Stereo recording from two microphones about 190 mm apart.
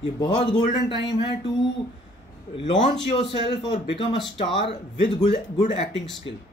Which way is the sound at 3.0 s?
30° left (ahead or behind).